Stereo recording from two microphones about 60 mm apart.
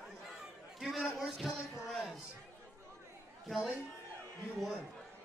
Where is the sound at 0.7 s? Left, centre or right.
Centre.